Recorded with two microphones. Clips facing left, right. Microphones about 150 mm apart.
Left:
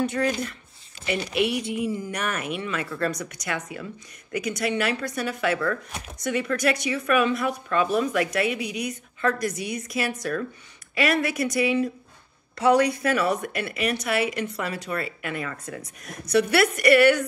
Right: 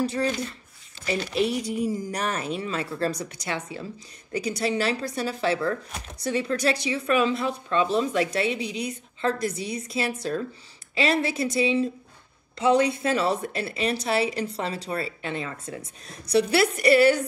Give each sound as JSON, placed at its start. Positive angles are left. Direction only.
{"t": 0.0, "sound": "a woman's voice", "side_deg": -30}
{"t": 1.3, "sound": "a woman's voice", "side_deg": -35}
{"t": 5.9, "sound": "speech", "side_deg": 0}
{"t": 6.1, "sound": "speech", "side_deg": -30}